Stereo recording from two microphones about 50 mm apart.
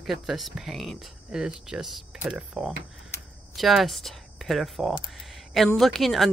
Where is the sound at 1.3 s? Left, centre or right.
Centre.